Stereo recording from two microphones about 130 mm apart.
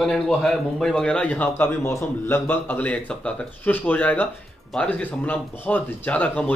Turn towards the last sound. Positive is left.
turn(degrees=10)  # may be behind; listen again after turning